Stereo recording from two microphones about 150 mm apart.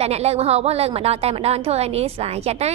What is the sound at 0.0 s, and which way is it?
A woman's voice, 45° right (ahead or behind).